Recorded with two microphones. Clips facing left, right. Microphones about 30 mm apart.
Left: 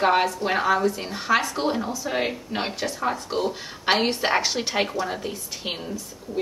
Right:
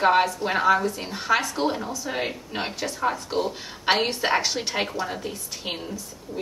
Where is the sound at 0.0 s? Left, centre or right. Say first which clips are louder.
Right 1 dB; centre.